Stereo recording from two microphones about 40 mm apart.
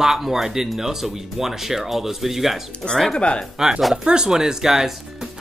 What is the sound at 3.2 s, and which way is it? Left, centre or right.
Speech, left.